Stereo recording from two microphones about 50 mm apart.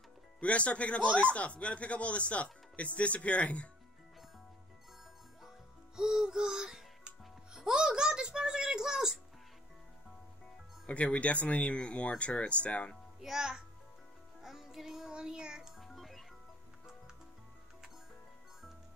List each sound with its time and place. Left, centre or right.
0.4 s speech: left
5.9 s music: centre
10.9 s speech: left
13.2 s a child's voice: centre
14.4 s music: centre
15.8 s music: centre